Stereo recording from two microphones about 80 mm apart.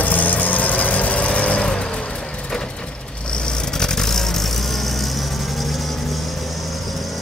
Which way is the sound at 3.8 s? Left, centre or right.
Centre.